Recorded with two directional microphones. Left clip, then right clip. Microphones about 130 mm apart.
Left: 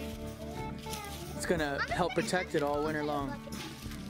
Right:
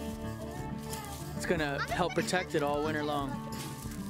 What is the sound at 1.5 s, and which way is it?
Speech, 10° right (ahead or behind).